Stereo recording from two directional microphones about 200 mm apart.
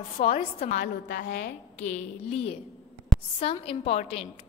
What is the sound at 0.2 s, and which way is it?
Speech, 30° left (ahead or behind).